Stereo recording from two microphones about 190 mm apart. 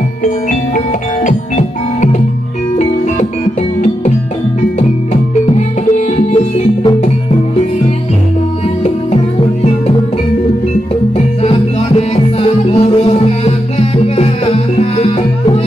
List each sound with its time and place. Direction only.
0.2 s music: 45° left (ahead or behind)
4.7 s music: 35° left (ahead or behind)
8.8 s music: 35° left (ahead or behind)
11.1 s music: 30° left (ahead or behind)